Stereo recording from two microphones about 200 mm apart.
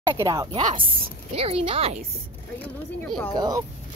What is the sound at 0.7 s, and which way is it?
A woman's voice, 30° right (ahead or behind).